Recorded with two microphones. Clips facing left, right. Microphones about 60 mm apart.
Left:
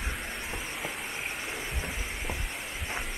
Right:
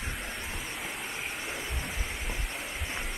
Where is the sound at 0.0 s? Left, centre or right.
Centre.